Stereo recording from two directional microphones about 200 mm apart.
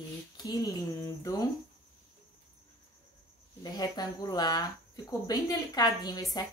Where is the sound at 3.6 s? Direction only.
20° left (ahead or behind).